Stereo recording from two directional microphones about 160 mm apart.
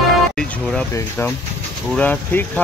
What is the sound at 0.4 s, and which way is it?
Vehicle, 5° left (ahead or behind).